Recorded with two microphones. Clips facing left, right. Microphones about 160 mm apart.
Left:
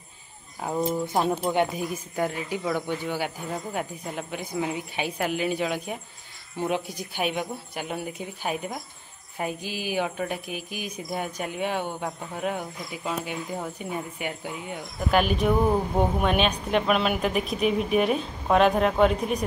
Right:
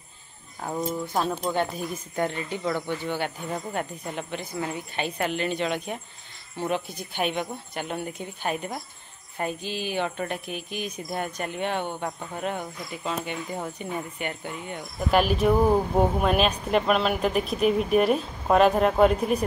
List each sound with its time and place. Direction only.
0.6 s speech: 5° left (ahead or behind)
0.9 s speech: 20° left (ahead or behind); by 19.4 s centre (ahead or behind)